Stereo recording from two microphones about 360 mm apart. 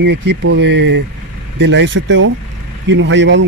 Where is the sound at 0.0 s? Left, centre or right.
Right.